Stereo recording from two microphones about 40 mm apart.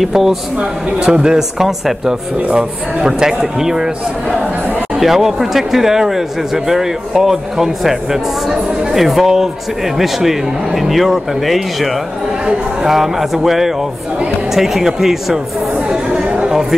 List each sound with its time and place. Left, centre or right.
0.1 s speech: centre
0.6 s speech: right
1.6 s speech: centre
4.9 s speech: centre
15.9 s chatter: right